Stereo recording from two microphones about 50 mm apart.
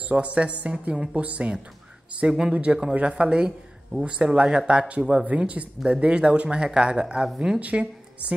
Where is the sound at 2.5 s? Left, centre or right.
Right.